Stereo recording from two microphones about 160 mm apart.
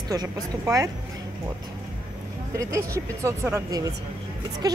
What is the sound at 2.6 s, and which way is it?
Speech, 20° right (ahead or behind).